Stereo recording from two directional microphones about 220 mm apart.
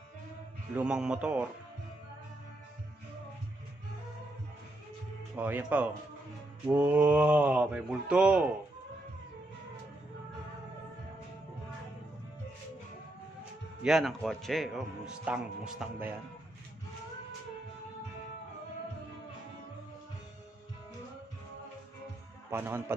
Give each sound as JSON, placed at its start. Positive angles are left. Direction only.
{"t": 0.7, "sound": "a man's voice", "side_deg": -5}
{"t": 5.3, "sound": "a man's voice", "side_deg": -10}
{"t": 13.8, "sound": "a man's voice", "side_deg": 0}
{"t": 22.5, "sound": "a man's voice", "side_deg": -10}